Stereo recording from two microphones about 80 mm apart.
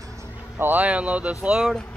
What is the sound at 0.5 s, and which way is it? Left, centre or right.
Speech, right.